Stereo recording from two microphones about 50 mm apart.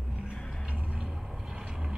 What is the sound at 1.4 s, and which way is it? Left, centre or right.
Vehicle, centre.